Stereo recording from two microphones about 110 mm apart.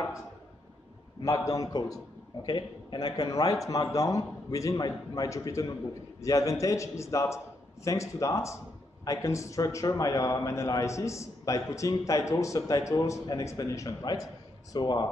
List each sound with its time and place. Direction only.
1.2 s a man's voice: 30° left (ahead or behind)